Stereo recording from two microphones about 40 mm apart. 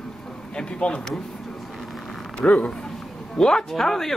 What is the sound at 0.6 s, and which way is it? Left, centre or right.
Speech, left.